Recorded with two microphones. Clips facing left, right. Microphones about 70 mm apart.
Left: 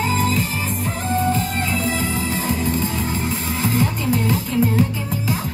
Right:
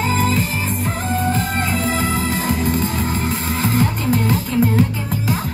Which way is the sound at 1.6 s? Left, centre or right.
Right.